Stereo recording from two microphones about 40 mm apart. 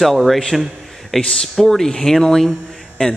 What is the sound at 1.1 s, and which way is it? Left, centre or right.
Speech, centre.